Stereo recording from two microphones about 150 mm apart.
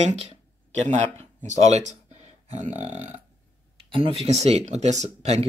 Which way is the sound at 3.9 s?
35° right (ahead or behind).